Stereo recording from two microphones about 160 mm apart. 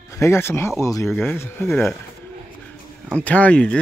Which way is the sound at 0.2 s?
15° left (ahead or behind).